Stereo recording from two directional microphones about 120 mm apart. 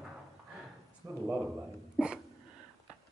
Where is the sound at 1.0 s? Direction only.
30° right (ahead or behind).